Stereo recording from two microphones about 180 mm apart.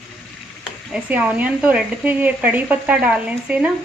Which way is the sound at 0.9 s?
10° right (ahead or behind).